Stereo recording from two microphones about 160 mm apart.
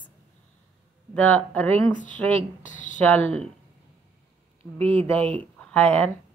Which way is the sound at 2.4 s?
50° left (ahead or behind).